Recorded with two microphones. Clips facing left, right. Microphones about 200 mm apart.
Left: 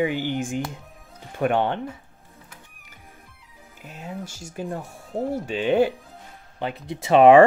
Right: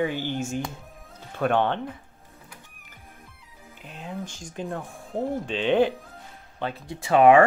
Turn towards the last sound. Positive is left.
turn(degrees=25)  # may be behind; listen again after turning